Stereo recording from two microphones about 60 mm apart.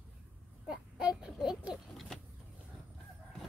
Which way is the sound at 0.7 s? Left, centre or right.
Centre.